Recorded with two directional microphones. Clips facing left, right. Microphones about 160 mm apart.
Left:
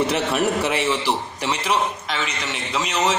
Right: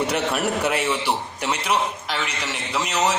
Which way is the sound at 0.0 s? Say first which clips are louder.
Left 2 dB; centre (ahead or behind).